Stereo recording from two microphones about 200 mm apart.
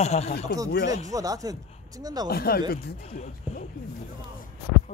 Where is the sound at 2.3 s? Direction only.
50° left (ahead or behind).